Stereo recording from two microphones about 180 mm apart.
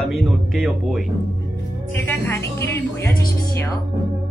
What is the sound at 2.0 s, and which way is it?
Music, 10° left (ahead or behind).